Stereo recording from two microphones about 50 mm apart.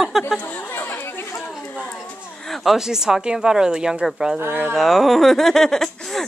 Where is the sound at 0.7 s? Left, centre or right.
Left.